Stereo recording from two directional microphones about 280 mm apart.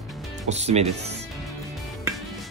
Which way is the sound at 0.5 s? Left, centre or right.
Right.